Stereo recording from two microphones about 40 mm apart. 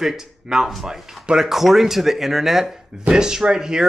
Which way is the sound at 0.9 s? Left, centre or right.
Centre.